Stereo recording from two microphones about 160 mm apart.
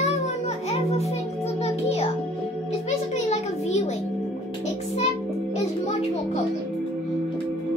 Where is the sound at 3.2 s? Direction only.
45° left (ahead or behind).